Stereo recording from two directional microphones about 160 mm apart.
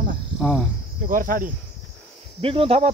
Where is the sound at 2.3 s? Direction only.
35° right (ahead or behind).